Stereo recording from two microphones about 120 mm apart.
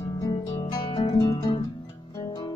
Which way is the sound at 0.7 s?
40° left (ahead or behind).